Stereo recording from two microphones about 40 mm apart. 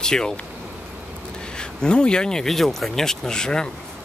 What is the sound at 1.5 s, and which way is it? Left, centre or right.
Speech, left.